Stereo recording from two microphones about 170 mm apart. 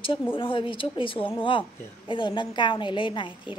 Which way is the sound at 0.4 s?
30° left (ahead or behind).